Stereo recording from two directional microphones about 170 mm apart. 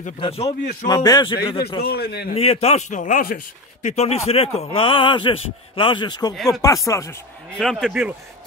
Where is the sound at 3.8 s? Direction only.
40° left (ahead or behind).